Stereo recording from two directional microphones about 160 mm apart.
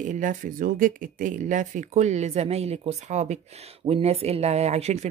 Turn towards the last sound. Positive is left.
turn(degrees=-45)  # may be behind; listen again after turning